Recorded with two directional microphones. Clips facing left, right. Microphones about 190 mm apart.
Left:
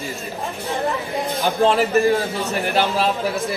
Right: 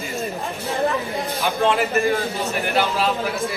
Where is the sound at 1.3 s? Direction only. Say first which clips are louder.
Left 3 dB; 35° left (ahead or behind).